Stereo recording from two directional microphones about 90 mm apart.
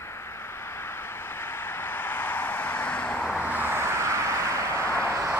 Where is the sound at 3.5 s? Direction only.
25° right (ahead or behind).